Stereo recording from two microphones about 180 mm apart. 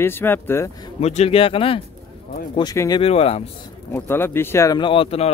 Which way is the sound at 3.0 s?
30° left (ahead or behind).